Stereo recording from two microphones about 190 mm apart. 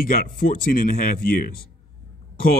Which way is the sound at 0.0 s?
50° left (ahead or behind).